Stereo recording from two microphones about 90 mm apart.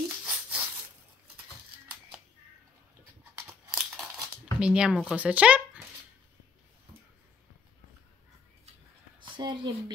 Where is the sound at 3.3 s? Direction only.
10° right (ahead or behind).